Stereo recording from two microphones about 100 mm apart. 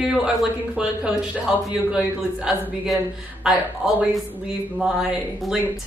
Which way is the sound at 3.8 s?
15° right (ahead or behind).